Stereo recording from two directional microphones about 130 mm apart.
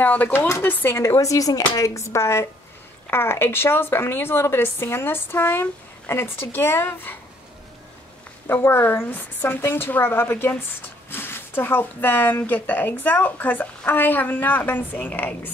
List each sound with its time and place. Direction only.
0.0 s a woman's voice: 15° left (ahead or behind)
8.5 s a woman's voice: 15° left (ahead or behind)